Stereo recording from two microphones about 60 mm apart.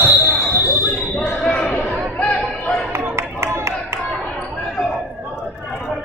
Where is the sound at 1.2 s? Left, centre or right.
Centre.